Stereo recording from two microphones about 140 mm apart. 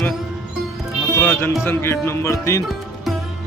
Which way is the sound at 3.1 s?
Centre (ahead or behind).